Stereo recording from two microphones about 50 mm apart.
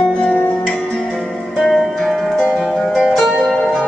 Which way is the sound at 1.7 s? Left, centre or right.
Centre.